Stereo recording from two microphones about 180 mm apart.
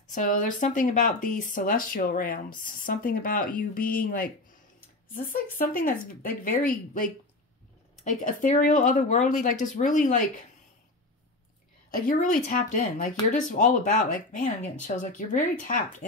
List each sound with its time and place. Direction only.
0.1 s speech: 50° left (ahead or behind)
11.9 s speech: 50° left (ahead or behind)